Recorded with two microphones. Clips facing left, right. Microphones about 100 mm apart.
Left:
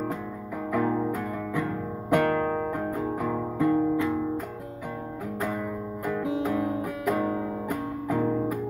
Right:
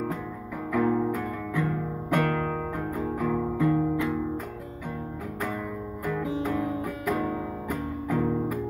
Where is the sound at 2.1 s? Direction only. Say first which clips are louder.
Left 3 dB; 15° left (ahead or behind).